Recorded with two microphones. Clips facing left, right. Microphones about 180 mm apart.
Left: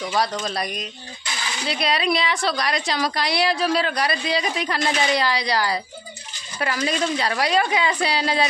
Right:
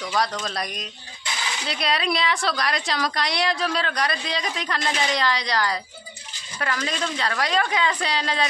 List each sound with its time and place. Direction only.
0.4 s a woman's voice: 5° left (ahead or behind)